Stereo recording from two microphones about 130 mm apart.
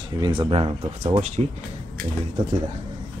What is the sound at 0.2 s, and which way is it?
Speech, 45° right (ahead or behind).